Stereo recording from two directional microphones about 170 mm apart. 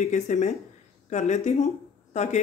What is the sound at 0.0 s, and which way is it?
Speech, 45° left (ahead or behind).